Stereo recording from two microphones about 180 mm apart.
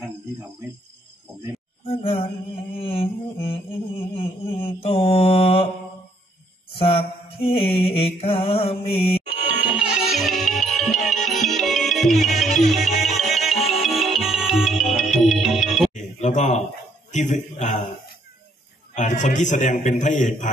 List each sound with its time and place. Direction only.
1.9 s mantra: 30° left (ahead or behind)
6.8 s mantra: 30° left (ahead or behind)
9.8 s music: centre (ahead or behind)
15.9 s a sound: 40° left (ahead or behind)
18.9 s a man's voice: 45° left (ahead or behind)